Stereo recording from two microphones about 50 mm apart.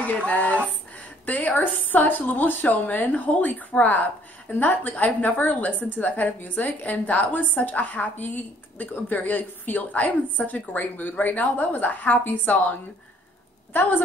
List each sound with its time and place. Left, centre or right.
0.0 s a woman's voice: left